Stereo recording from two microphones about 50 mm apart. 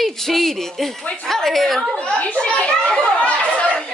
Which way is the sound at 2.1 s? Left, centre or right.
Left.